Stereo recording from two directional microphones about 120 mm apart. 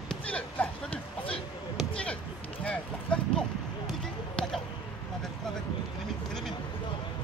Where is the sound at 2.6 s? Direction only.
10° left (ahead or behind).